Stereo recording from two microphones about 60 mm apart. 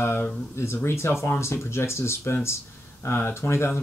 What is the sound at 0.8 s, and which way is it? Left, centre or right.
Speech, left.